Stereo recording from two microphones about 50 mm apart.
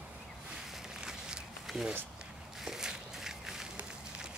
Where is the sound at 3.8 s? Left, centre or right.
Centre.